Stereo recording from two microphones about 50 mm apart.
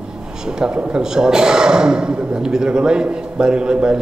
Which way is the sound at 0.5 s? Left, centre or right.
Centre.